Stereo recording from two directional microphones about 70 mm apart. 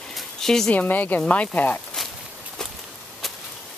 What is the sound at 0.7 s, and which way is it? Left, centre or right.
Speech, left.